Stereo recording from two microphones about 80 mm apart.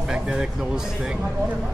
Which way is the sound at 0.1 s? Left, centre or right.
Centre.